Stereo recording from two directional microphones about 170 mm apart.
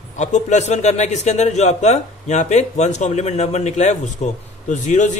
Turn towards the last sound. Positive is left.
turn(degrees=45)  # may be behind; listen again after turning